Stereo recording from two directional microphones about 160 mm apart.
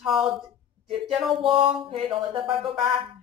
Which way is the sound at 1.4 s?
35° right (ahead or behind).